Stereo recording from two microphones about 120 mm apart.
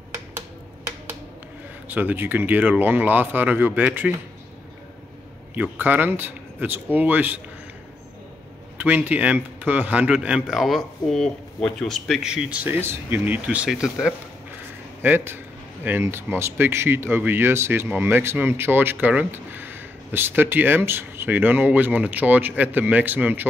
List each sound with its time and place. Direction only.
1.9 s speech: 15° right (ahead or behind)
5.5 s speech: 15° right (ahead or behind)
8.7 s speech: 15° right (ahead or behind)
15.0 s speech: 20° right (ahead or behind)